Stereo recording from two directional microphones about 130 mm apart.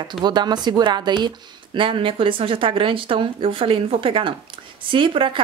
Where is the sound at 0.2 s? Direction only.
35° right (ahead or behind).